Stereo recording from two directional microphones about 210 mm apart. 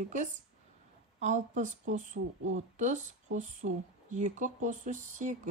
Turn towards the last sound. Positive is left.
turn(degrees=-35)  # may be behind; listen again after turning